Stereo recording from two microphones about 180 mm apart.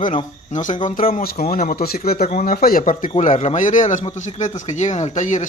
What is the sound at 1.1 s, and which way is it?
Speech, 55° left (ahead or behind).